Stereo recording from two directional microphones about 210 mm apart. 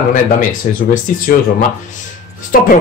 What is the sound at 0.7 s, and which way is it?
Speech, 35° left (ahead or behind).